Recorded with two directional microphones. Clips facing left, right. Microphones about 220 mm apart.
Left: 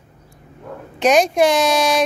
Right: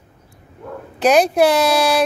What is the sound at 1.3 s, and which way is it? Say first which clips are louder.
Speech: right 1 dB; 5° right (ahead or behind).